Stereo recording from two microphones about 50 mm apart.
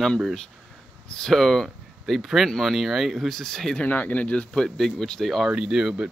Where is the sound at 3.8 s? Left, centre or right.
Left.